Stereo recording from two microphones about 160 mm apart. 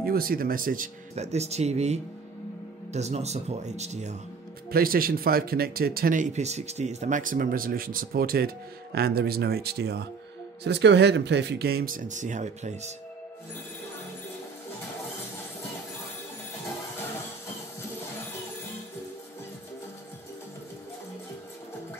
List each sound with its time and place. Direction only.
0.0 s speech: 65° right (ahead or behind)
1.1 s speech: 40° right (ahead or behind)
4.6 s speech: 65° right (ahead or behind); by 12.9 s 50° right (ahead or behind)